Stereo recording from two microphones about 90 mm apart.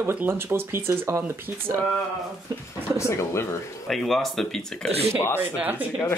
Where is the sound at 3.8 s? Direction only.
Centre (ahead or behind).